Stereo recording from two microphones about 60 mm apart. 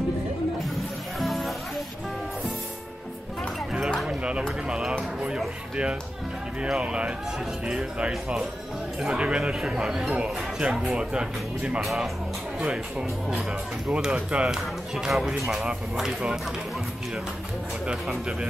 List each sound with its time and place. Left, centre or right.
0.6 s music: centre
4.2 s a sound: centre
4.6 s speech: centre
6.7 s speech: centre
9.2 s speech: centre
11.8 s speech: centre
13.8 s speech: centre
18.0 s speech: centre